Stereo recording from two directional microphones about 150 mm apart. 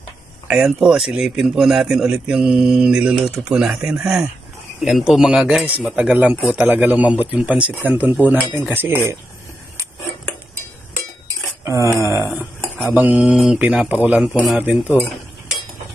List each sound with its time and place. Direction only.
0.5 s a man's voice: 5° right (ahead or behind)
11.6 s a man's voice: 20° right (ahead or behind)